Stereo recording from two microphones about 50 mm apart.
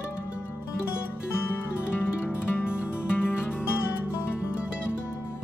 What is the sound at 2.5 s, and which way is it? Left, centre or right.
Music, left.